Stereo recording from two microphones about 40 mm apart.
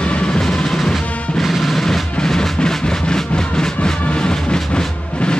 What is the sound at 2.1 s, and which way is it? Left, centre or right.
Music, centre.